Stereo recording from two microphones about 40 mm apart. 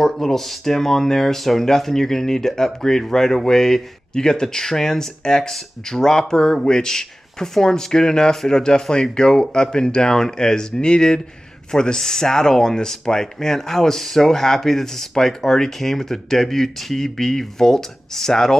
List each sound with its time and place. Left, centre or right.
0.0 s speech: centre